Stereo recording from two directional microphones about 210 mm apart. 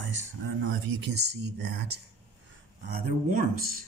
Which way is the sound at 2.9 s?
40° right (ahead or behind).